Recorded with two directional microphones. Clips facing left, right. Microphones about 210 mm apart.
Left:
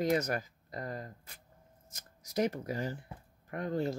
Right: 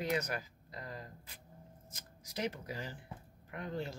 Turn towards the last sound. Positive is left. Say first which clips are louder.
# left 7 dB
turn(degrees=45)  # may be behind; listen again after turning